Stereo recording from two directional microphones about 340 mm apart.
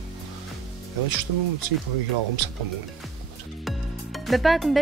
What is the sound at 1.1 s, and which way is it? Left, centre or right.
Speech, right.